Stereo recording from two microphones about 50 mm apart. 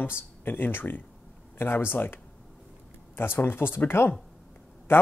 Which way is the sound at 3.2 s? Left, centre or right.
Left.